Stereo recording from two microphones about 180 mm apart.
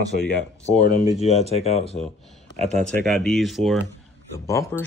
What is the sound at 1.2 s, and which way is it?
Speech, 35° left (ahead or behind).